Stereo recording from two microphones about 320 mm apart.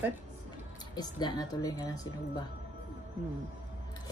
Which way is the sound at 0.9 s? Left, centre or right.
Centre.